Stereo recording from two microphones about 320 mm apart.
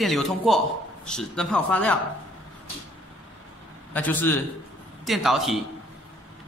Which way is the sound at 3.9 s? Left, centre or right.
Centre.